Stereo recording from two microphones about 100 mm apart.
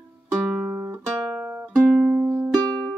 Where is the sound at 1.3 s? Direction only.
15° right (ahead or behind).